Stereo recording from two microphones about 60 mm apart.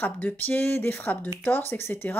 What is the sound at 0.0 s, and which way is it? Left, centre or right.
Speech, left.